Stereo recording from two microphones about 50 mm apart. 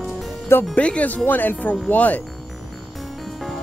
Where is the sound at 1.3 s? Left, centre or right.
Left.